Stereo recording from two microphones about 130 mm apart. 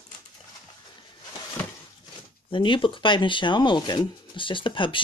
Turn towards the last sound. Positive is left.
turn(degrees=40)  # may be behind; listen again after turning